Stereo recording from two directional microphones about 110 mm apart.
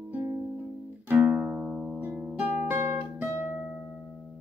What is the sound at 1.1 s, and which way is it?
Music, 15° right (ahead or behind).